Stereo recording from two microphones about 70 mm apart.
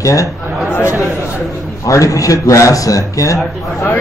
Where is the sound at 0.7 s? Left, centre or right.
Left.